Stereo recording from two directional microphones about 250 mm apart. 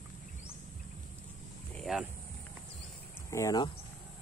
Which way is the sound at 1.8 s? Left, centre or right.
Centre.